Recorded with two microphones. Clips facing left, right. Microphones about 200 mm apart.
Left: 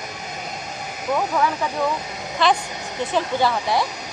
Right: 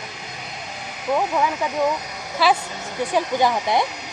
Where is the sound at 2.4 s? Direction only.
5° right (ahead or behind).